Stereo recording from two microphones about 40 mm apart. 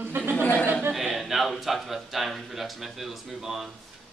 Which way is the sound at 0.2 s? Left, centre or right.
Right.